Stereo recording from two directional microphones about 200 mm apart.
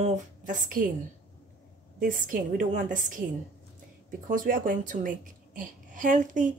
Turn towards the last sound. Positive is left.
turn(degrees=-40)  # may be behind; listen again after turning